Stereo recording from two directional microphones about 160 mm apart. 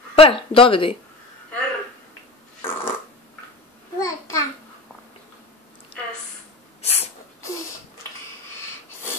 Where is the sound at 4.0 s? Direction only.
20° left (ahead or behind).